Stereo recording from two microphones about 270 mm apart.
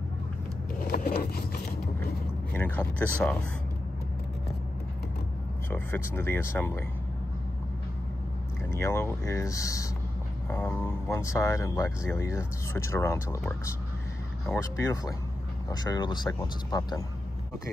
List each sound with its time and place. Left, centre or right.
0.9 s a sound: left
2.5 s speech: centre
5.7 s speech: centre
8.7 s speech: centre